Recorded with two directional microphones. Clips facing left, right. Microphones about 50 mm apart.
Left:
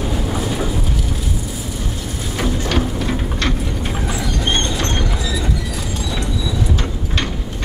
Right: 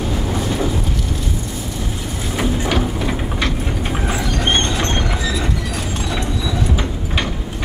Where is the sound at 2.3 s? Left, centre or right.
Centre.